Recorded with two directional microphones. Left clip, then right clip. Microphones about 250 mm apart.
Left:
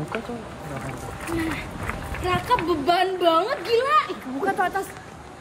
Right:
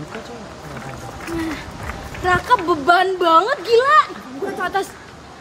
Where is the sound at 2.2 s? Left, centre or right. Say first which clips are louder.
Right 6 dB; centre.